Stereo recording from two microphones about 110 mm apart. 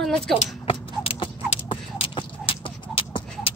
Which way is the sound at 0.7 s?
55° left (ahead or behind).